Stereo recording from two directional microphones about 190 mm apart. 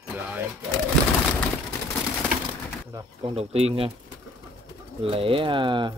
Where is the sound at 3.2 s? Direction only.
30° right (ahead or behind).